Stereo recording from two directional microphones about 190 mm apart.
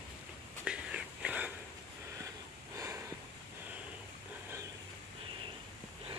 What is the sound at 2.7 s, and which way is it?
Snort, 15° right (ahead or behind).